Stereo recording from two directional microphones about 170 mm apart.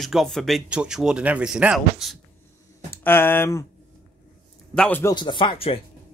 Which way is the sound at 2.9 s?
10° left (ahead or behind).